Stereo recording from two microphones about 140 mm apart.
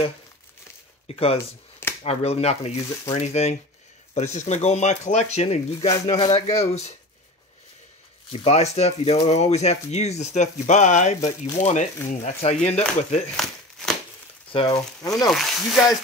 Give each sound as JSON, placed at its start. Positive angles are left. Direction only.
{"t": 1.0, "sound": "speech", "side_deg": 45}
{"t": 1.4, "sound": "finger snapping", "side_deg": 15}
{"t": 2.0, "sound": "speech", "side_deg": 45}
{"t": 8.3, "sound": "speech", "side_deg": 50}
{"t": 13.4, "sound": "crumpling", "side_deg": 0}
{"t": 14.5, "sound": "speech", "side_deg": 40}
{"t": 15.0, "sound": "speech", "side_deg": 25}
{"t": 15.2, "sound": "speech", "side_deg": 0}